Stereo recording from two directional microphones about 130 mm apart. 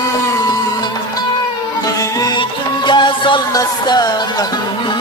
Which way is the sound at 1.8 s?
25° left (ahead or behind).